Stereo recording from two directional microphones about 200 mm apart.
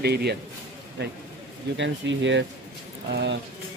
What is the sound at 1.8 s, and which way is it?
Speech, 65° right (ahead or behind).